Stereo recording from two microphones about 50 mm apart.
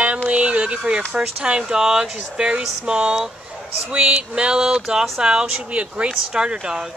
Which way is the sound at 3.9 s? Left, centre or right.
Right.